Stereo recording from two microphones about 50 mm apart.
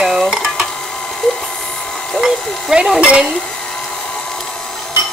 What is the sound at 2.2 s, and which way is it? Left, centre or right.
Speech, centre.